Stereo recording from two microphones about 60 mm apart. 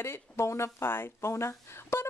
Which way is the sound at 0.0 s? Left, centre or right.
Left.